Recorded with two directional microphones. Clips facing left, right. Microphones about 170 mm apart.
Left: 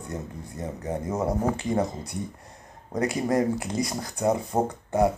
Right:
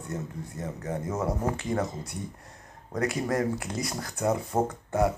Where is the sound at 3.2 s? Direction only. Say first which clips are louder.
Left 6 dB; 15° left (ahead or behind).